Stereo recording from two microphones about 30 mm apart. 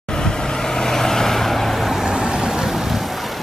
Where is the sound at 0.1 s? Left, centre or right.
Left; by 2.0 s centre.